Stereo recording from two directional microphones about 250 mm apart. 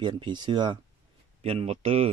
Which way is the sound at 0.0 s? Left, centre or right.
Centre.